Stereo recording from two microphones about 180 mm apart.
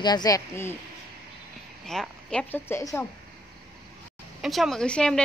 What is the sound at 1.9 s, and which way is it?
A woman's voice, 5° left (ahead or behind).